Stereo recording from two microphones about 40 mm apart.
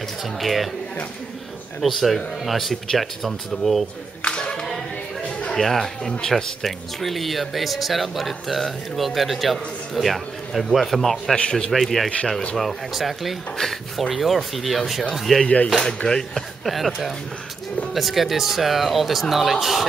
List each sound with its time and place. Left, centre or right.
0.4 s speech: centre
1.8 s speech: centre
4.2 s singing: left
5.6 s speech: centre
15.4 s speech: left
15.8 s speech: centre
16.6 s speech: centre